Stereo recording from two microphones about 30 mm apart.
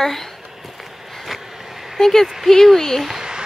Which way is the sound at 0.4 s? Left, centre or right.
Centre.